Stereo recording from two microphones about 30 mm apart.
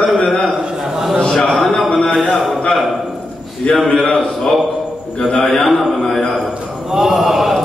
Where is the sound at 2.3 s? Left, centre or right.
Centre.